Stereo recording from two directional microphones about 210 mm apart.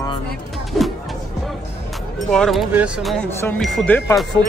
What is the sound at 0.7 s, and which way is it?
Music, centre (ahead or behind).